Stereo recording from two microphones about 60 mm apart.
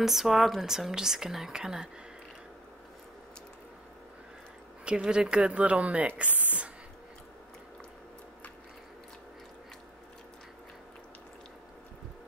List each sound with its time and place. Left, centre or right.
0.0 s speech: centre
4.8 s speech: centre